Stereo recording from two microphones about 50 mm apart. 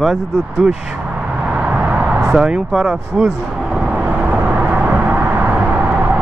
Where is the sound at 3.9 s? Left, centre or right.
Right.